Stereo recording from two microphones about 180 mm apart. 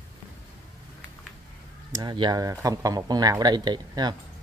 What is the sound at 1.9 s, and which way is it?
Speech, 20° right (ahead or behind).